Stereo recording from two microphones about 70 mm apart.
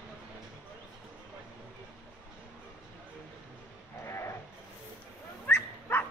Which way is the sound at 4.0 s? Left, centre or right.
Left.